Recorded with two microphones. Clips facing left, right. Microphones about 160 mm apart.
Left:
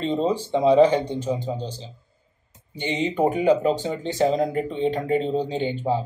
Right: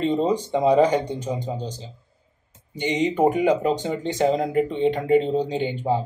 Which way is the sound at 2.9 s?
15° right (ahead or behind).